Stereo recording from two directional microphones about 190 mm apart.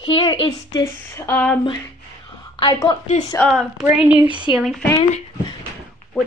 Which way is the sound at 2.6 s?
20° left (ahead or behind).